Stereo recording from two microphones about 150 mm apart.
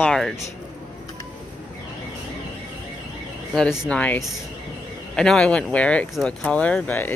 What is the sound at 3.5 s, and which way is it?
Speech, centre (ahead or behind).